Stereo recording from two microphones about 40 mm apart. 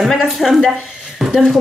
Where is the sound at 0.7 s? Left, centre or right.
Centre.